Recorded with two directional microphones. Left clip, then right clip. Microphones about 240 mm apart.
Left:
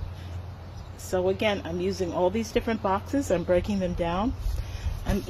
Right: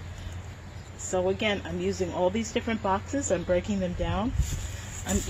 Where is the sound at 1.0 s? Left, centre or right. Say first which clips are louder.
Left 2 dB; left.